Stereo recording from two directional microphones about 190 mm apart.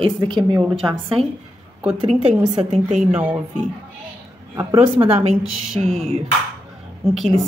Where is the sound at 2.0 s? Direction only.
30° right (ahead or behind).